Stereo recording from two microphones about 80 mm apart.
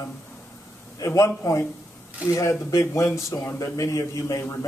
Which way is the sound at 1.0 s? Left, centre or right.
Left.